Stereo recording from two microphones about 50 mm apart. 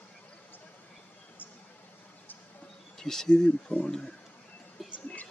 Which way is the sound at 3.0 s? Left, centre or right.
Centre.